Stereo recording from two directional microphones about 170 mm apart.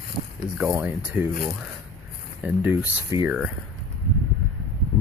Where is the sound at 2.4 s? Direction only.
10° right (ahead or behind).